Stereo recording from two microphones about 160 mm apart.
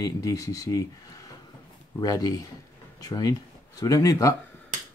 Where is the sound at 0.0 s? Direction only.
20° left (ahead or behind).